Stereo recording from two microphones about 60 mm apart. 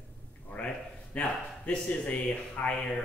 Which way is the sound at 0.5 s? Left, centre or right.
Left.